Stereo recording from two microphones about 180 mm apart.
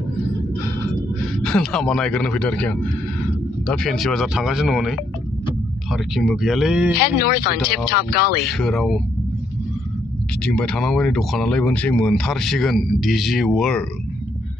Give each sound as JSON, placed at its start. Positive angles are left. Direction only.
{"t": 1.4, "sound": "speech", "side_deg": 5}
{"t": 6.9, "sound": "speech", "side_deg": 60}
{"t": 8.5, "sound": "speech", "side_deg": 0}
{"t": 10.4, "sound": "speech", "side_deg": 5}